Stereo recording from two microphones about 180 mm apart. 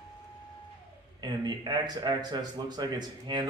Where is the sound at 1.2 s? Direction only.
20° right (ahead or behind).